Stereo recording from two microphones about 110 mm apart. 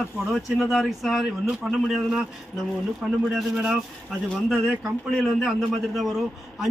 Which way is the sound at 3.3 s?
5° right (ahead or behind).